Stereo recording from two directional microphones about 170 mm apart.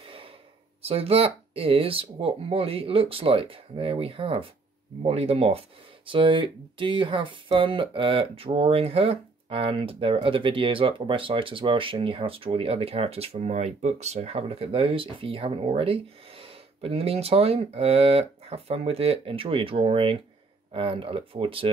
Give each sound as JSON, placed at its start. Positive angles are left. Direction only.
{"t": 0.0, "sound": "sigh", "side_deg": -30}
{"t": 0.8, "sound": "speech", "side_deg": -35}